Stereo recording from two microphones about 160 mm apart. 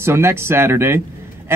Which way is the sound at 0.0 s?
15° right (ahead or behind).